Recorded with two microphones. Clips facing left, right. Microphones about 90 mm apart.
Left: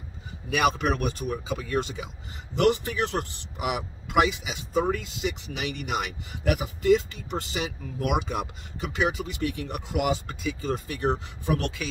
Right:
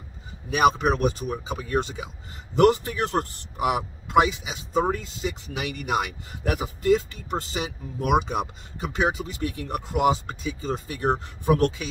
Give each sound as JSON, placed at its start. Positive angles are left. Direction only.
{"t": 0.5, "sound": "speech", "side_deg": -35}